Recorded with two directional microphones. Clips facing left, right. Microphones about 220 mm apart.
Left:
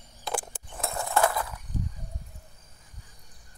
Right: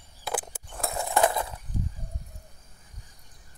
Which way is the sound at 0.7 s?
Centre (ahead or behind).